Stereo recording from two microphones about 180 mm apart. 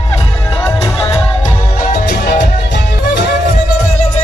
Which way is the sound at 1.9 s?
40° left (ahead or behind).